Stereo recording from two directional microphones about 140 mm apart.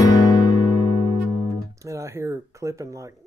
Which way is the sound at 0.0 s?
30° left (ahead or behind).